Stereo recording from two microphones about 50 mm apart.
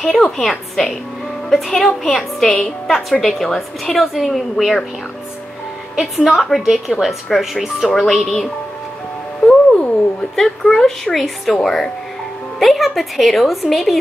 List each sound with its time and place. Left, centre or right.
0.0 s a woman's voice: centre
5.9 s a woman's voice: centre
9.4 s music: centre
10.3 s speech: centre
11.1 s a woman's voice: centre